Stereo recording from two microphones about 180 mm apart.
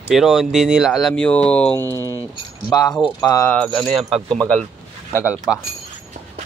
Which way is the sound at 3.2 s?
15° left (ahead or behind).